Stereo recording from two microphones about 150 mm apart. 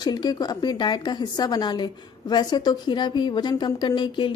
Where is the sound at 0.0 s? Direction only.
25° left (ahead or behind).